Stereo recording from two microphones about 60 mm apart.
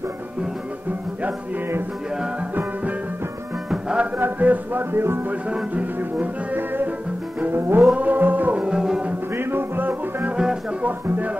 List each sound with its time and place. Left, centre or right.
3.7 s music: centre
4.2 s music: right
5.3 s speech: centre
5.9 s music: right
7.9 s music: right
8.5 s music: centre
9.3 s music: right
10.3 s music: centre
10.8 s music: right